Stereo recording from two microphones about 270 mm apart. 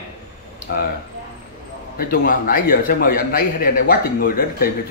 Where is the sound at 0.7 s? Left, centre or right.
Left.